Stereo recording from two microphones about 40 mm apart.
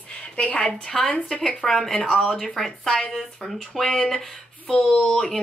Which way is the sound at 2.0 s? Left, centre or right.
Left.